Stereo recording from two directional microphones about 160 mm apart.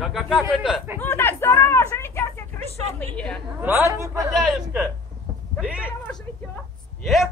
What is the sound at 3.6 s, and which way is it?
Speech, 15° right (ahead or behind).